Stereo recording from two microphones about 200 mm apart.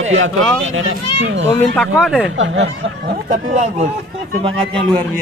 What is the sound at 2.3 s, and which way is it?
Speech, 70° right (ahead or behind).